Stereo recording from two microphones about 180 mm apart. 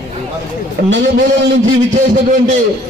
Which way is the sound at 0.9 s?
80° right.